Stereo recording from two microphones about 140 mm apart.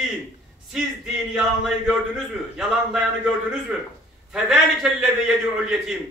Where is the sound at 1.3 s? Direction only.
5° right (ahead or behind).